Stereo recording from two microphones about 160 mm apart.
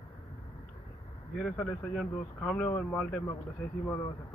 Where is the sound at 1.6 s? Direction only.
10° left (ahead or behind).